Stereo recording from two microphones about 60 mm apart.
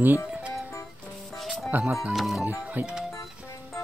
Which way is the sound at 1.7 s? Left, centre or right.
Right.